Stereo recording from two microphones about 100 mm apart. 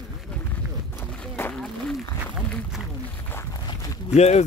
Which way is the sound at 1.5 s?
5° left (ahead or behind).